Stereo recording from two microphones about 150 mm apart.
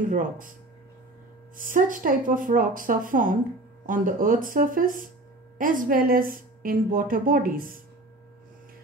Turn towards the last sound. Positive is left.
turn(degrees=-70)  # may be behind; listen again after turning